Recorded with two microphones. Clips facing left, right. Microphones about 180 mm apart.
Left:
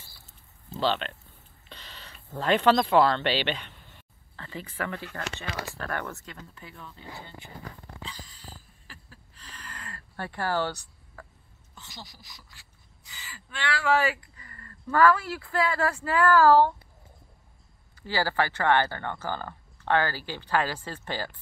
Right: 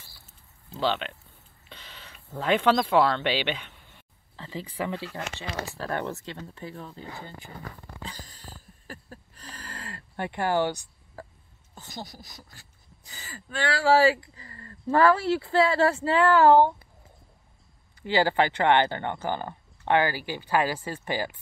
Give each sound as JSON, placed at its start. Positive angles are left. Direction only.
{"t": 0.7, "sound": "speech", "side_deg": -10}
{"t": 8.0, "sound": "a sound", "side_deg": -45}
{"t": 10.1, "sound": "speech", "side_deg": -20}
{"t": 11.2, "sound": "a sound", "side_deg": -25}
{"t": 11.7, "sound": "speech", "side_deg": -40}
{"t": 18.0, "sound": "speech", "side_deg": -20}